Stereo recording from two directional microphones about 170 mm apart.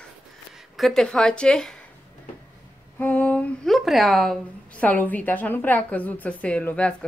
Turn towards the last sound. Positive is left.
turn(degrees=10)  # may be behind; listen again after turning